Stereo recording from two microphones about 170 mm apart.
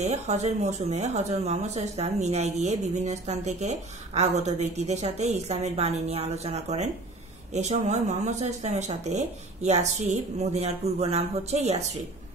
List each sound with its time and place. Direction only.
0.0 s speech: 40° right (ahead or behind)